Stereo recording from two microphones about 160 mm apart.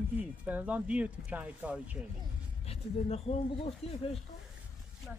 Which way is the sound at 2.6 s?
40° left (ahead or behind).